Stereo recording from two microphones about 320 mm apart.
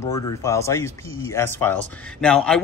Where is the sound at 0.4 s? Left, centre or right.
Centre.